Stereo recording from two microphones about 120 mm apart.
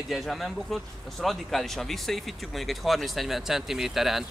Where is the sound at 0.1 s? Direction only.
Centre (ahead or behind).